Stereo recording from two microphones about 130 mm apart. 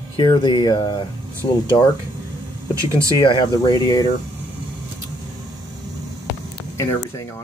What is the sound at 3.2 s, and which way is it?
Speech, 35° left (ahead or behind).